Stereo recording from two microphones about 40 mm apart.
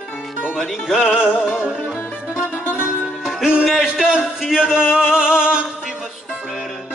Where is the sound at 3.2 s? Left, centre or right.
Centre.